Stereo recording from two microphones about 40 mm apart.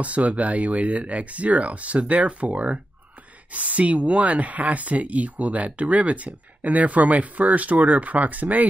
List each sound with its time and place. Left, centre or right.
0.0 s speech: right